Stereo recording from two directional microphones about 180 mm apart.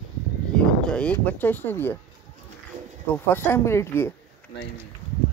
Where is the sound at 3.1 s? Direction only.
10° left (ahead or behind).